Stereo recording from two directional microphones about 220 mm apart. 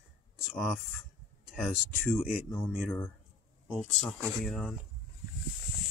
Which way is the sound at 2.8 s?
10° left (ahead or behind).